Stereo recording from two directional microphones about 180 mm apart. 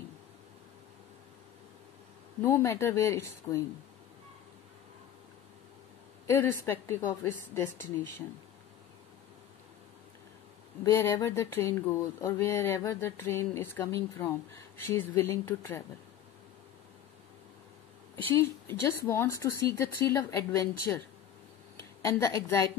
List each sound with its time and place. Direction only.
2.4 s speech: 15° left (ahead or behind)
6.2 s speech: 15° left (ahead or behind)
10.8 s speech: 15° left (ahead or behind)
18.3 s speech: 15° left (ahead or behind)
22.0 s speech: 15° left (ahead or behind)